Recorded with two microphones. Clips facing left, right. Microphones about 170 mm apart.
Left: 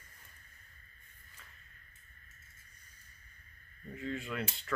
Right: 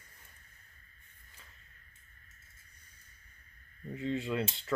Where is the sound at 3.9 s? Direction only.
25° right (ahead or behind).